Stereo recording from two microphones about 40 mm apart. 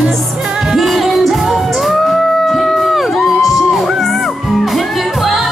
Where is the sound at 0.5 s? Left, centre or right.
Centre.